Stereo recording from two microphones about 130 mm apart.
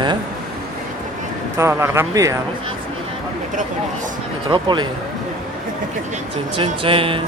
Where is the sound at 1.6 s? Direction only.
20° right (ahead or behind).